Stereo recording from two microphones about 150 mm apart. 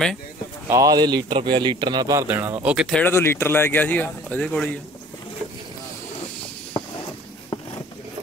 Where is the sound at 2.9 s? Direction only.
10° left (ahead or behind).